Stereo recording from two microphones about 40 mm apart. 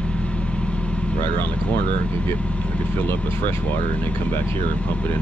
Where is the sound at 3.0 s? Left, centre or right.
Left.